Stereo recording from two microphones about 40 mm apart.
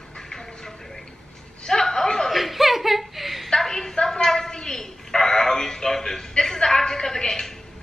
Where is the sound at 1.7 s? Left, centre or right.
Centre.